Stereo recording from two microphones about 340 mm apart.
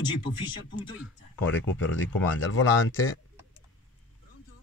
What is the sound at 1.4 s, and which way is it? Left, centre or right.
Speech, left.